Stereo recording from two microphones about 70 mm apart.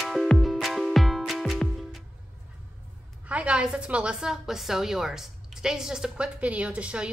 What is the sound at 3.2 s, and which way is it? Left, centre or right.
A woman's voice, centre.